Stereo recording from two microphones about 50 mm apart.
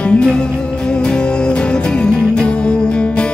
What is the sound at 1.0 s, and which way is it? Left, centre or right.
Music, centre.